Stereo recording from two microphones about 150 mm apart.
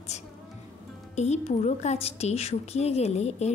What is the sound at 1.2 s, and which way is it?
A woman's voice, 45° left (ahead or behind).